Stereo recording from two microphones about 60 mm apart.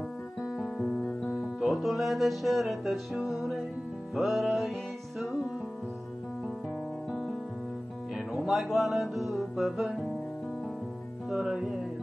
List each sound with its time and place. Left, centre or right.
0.4 s music: centre
0.8 s music: centre
1.3 s music: centre
8.3 s music: centre
11.2 s music: centre